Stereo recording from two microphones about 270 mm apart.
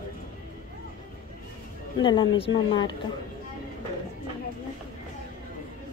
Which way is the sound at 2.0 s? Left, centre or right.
Centre.